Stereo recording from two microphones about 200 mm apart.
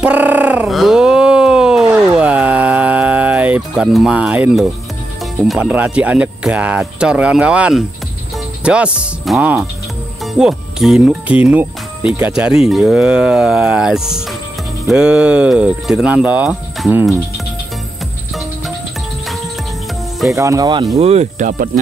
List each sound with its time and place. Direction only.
0.0 s a sound: 10° right (ahead or behind)
5.5 s speech: 5° right (ahead or behind)
20.3 s speech: 15° right (ahead or behind)
21.0 s speech: 30° right (ahead or behind)